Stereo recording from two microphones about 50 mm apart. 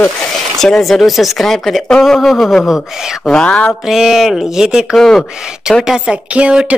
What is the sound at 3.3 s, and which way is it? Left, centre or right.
Speech, left.